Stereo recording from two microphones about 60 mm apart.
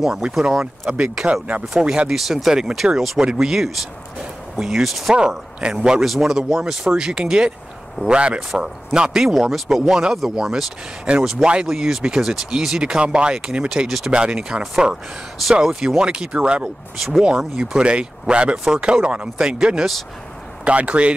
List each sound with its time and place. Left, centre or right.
0.0 s speech: centre
0.8 s speech: right
1.2 s speech: right; by 14.1 s centre
14.1 s speech: centre